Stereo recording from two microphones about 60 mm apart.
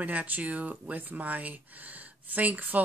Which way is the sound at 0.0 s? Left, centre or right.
Right.